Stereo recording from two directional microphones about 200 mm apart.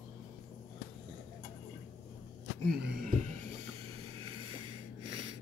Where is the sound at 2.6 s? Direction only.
55° right (ahead or behind).